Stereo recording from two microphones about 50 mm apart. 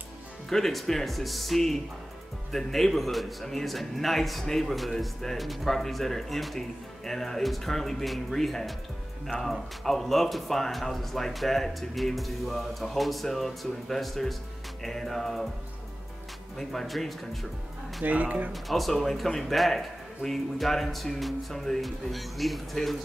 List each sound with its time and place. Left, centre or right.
0.5 s speech: centre
16.5 s speech: centre
18.0 s speech: right
18.5 s speech: centre